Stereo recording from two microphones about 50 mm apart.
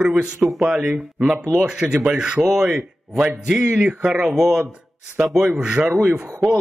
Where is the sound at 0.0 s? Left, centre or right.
Centre.